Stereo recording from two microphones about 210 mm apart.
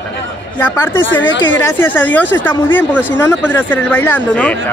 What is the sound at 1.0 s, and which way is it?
Speech, 60° left (ahead or behind).